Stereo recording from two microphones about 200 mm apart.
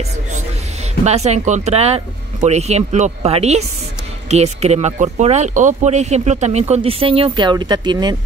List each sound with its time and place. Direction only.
1.0 s speech: 35° right (ahead or behind)